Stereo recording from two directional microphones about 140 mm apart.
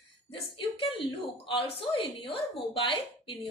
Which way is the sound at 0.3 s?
40° left (ahead or behind).